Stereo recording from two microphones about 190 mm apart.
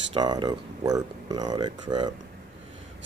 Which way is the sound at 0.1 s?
20° right (ahead or behind).